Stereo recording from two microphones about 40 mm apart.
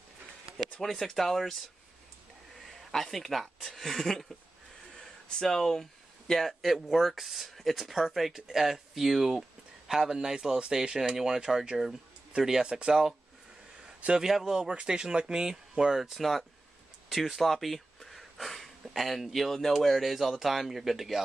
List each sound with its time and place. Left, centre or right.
0.8 s speech: centre
2.8 s speech: centre
3.7 s a sound: centre
5.3 s speech: centre
6.6 s speech: centre; by 12.9 s right
14.2 s speech: centre
16.0 s speech: centre